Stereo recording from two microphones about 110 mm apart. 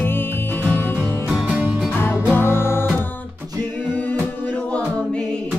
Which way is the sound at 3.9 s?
15° left (ahead or behind).